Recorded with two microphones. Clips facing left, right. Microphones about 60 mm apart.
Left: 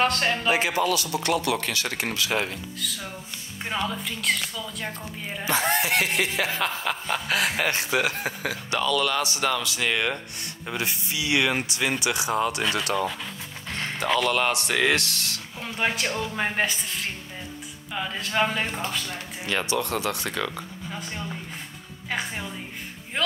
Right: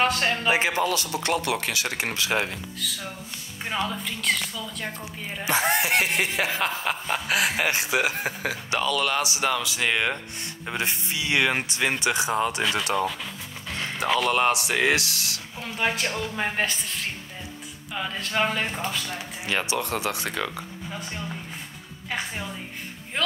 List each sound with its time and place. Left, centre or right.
0.0 s speech: centre
0.5 s speech: right
1.6 s speech: centre
2.0 s speech: right
2.8 s speech: centre
5.4 s speech: centre
6.4 s speech: centre
10.8 s speech: right
12.3 s speech: centre
14.0 s speech: centre
15.6 s speech: centre
17.9 s speech: centre
19.4 s speech: centre
23.2 s speech: centre